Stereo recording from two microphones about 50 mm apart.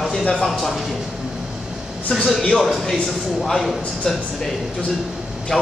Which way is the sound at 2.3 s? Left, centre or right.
Centre.